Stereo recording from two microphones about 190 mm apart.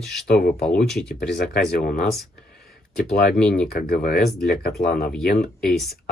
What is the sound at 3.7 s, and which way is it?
Speech, 50° left (ahead or behind).